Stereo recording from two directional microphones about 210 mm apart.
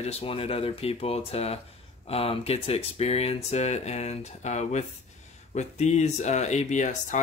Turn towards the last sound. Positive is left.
turn(degrees=35)  # may be behind; listen again after turning